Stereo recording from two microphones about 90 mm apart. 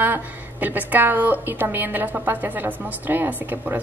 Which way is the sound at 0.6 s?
20° right (ahead or behind).